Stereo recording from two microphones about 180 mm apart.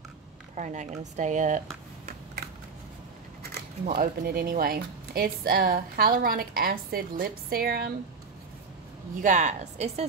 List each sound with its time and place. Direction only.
0.6 s speech: 40° right (ahead or behind)
3.8 s a woman's voice: 50° right (ahead or behind)
9.2 s a woman's voice: 40° right (ahead or behind)